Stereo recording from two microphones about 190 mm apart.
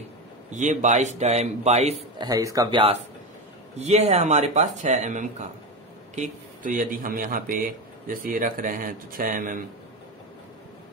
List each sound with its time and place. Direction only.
0.5 s a man's voice: 40° right (ahead or behind)
2.2 s a man's voice: 20° right (ahead or behind); by 9.6 s 45° right (ahead or behind)